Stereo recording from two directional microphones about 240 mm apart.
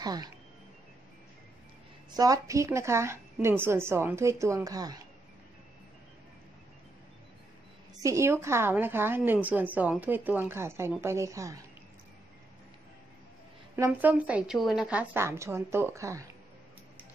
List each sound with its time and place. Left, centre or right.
0.0 s speech: centre
2.0 s a woman's voice: centre
8.0 s a woman's voice: centre
13.7 s a woman's voice: centre